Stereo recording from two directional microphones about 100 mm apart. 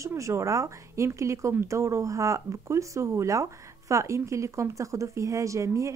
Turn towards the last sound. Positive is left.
turn(degrees=-30)  # may be behind; listen again after turning